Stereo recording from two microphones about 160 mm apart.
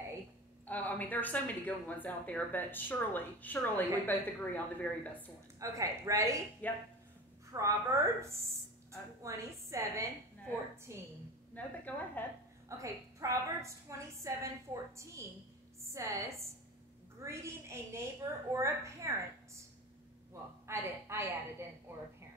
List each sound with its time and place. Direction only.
0.7 s speech: 10° left (ahead or behind)
5.6 s a woman's voice: 20° right (ahead or behind)
6.6 s speech: 10° left (ahead or behind)
7.5 s a woman's voice: 20° right (ahead or behind)
11.5 s speech: 10° left (ahead or behind)
12.6 s a woman's voice: 20° right (ahead or behind)
17.2 s a sound: 15° right (ahead or behind)
20.6 s a woman's voice: 15° right (ahead or behind)
21.9 s a sound: 15° right (ahead or behind)